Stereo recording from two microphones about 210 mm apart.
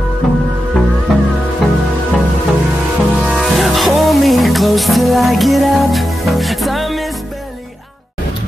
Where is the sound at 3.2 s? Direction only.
Centre (ahead or behind).